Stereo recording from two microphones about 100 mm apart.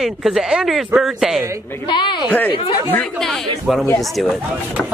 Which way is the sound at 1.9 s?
50° left (ahead or behind).